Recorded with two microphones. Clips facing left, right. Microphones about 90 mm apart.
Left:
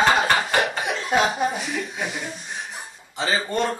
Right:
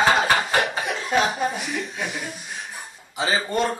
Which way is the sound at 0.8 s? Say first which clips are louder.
Left 1 dB; 15° left (ahead or behind).